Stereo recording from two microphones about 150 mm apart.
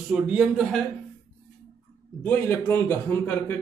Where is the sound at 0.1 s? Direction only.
5° right (ahead or behind).